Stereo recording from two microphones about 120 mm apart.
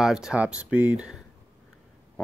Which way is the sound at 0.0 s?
5° right (ahead or behind).